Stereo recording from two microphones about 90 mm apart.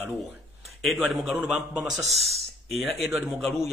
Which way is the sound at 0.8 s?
Centre (ahead or behind).